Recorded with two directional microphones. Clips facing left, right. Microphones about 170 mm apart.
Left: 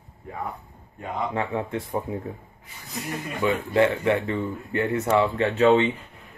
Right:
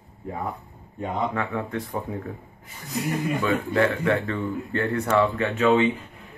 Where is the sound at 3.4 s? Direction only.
20° left (ahead or behind).